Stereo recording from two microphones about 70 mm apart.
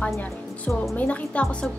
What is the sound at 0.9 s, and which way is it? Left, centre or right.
Speech, left.